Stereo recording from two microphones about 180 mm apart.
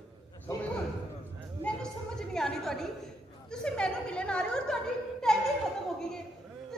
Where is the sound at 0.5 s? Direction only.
15° left (ahead or behind).